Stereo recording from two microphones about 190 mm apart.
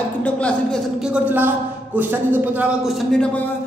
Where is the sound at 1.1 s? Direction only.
10° right (ahead or behind).